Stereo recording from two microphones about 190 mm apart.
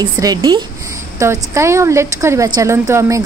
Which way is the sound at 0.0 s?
20° right (ahead or behind).